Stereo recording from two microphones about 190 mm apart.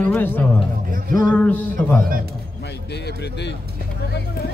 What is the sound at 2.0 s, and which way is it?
Speech, 50° right (ahead or behind).